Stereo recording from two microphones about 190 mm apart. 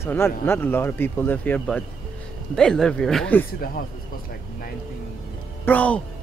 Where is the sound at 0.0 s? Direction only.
15° left (ahead or behind).